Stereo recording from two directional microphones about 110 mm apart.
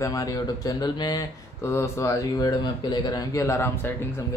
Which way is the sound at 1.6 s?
25° left (ahead or behind).